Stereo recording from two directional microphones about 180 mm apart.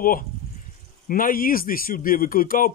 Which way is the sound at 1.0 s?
50° left (ahead or behind).